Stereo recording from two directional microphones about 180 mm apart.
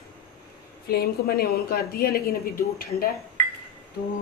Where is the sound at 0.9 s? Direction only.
60° left (ahead or behind).